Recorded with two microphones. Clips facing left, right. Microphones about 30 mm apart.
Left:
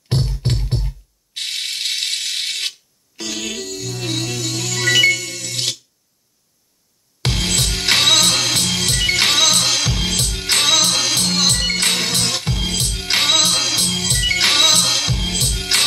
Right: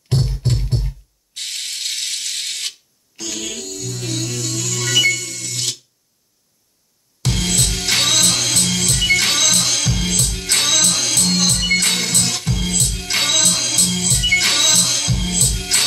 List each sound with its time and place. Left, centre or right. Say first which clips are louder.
0.4 s music: even; left
1.3 s ratchet: left 3 dB; left
3.3 s music: left 2 dB; left
7.2 s music: left 1 dB; left